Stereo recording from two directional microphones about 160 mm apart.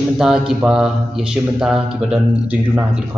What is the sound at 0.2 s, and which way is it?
A man's voice, 5° right (ahead or behind).